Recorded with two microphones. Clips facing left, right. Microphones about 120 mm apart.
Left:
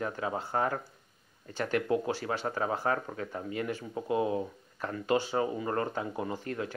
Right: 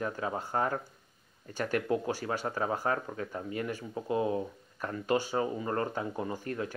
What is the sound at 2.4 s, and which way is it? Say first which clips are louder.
Speech: left 1 dB; 15° left (ahead or behind).